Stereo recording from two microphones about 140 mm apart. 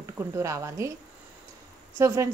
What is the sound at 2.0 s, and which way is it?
Speech, 20° right (ahead or behind).